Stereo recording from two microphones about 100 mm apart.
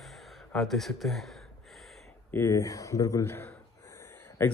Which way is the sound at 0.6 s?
Centre (ahead or behind).